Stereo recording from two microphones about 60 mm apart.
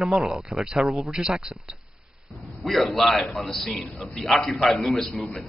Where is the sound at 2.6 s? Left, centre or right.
Centre.